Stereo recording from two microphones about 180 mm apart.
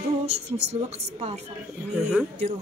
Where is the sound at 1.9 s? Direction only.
5° right (ahead or behind).